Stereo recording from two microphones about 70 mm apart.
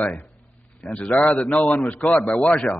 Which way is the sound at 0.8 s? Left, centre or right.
Centre.